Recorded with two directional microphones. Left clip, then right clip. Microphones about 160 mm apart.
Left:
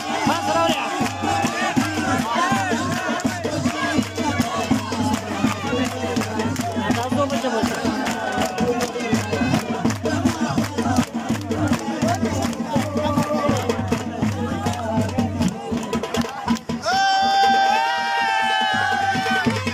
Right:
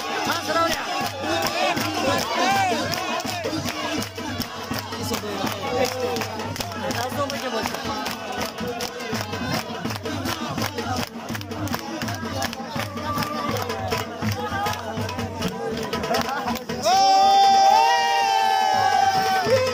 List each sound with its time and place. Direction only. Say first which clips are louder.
0.3 s music: left 3 dB; 10° left (ahead or behind)
16.8 s music: right 2 dB; 20° right (ahead or behind)
17.7 s crowd: right 2 dB; 40° right (ahead or behind)